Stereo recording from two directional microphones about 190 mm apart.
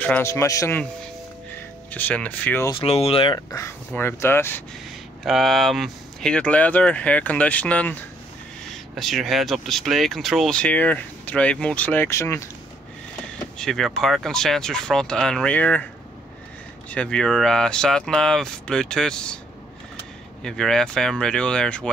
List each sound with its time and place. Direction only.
0.0 s speech: 10° left (ahead or behind)
1.9 s speech: 10° left (ahead or behind)
2.7 s speech: 30° left (ahead or behind); by 4.6 s 10° left (ahead or behind)
5.2 s speech: centre (ahead or behind)
13.6 s speech: centre (ahead or behind)
16.9 s speech: 5° left (ahead or behind)
20.4 s speech: 5° left (ahead or behind)